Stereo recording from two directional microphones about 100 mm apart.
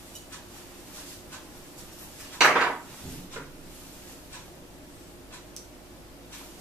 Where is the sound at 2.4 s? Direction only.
5° right (ahead or behind).